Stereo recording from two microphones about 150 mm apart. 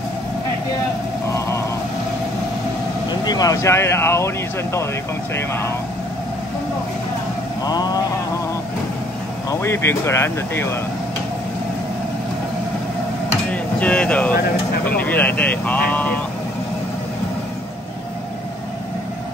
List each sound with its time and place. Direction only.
3.1 s speech: 25° left (ahead or behind)
5.3 s speech: 15° left (ahead or behind)
7.6 s mantra: 25° left (ahead or behind)
9.5 s speech: 20° left (ahead or behind)
13.5 s a sound: 10° left (ahead or behind)
14.9 s speech: 10° left (ahead or behind)